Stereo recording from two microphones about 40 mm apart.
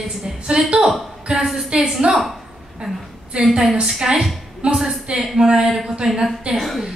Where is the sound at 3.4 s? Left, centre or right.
Centre.